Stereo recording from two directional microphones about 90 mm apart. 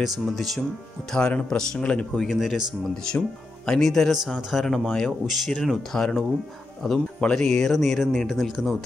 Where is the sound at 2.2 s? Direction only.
5° right (ahead or behind).